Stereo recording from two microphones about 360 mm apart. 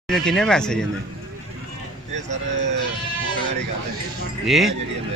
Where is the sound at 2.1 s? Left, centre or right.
Centre.